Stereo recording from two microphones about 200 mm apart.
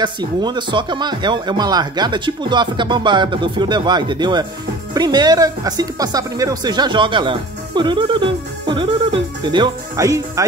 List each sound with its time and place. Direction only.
0.0 s speech: 20° right (ahead or behind)